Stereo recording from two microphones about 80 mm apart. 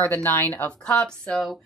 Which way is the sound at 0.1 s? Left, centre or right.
Left.